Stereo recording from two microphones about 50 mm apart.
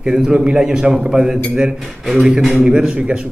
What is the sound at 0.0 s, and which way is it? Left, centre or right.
A man's voice, centre.